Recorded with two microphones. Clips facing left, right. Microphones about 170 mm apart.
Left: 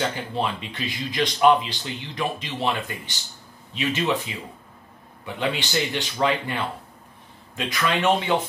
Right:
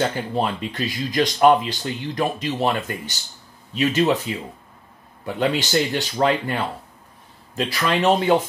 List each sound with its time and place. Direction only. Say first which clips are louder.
0.3 s speech: right 4 dB; 45° right (ahead or behind)
5.2 s a man's voice: right 5 dB; 40° right (ahead or behind)